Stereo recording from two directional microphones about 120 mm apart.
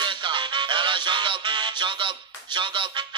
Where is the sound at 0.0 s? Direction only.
40° right (ahead or behind).